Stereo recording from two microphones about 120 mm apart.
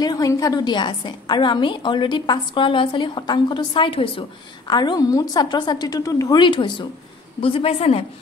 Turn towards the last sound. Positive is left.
turn(degrees=55)  # may be behind; listen again after turning